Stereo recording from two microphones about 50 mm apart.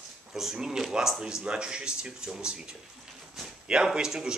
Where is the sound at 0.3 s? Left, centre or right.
Centre.